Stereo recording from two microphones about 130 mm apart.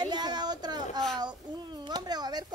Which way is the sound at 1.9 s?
30° right (ahead or behind).